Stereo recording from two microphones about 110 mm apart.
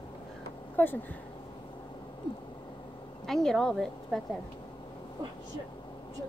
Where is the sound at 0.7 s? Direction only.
15° left (ahead or behind).